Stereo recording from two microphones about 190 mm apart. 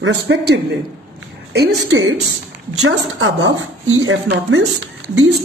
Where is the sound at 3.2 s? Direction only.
85° right.